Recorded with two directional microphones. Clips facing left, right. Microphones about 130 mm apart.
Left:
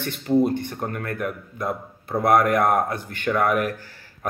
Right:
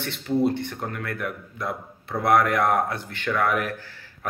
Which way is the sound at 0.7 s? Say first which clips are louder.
Left 3 dB; 35° left (ahead or behind).